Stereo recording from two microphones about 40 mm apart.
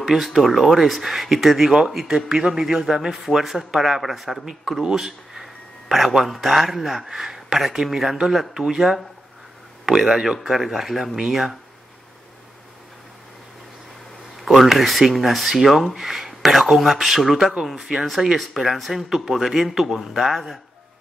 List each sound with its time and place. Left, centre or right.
0.0 s speech: centre
2.0 s a man's voice: centre
14.4 s a man's voice: centre